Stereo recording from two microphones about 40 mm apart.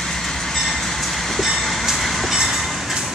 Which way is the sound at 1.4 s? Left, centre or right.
Centre.